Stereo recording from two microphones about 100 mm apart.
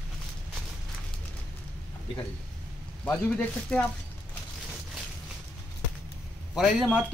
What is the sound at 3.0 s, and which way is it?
Speech, 15° left (ahead or behind).